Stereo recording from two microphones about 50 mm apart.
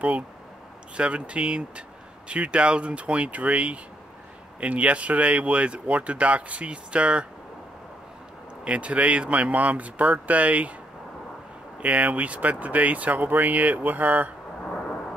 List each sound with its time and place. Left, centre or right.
0.9 s speech: right
8.6 s speech: right
11.8 s speech: right
14.6 s thunder: left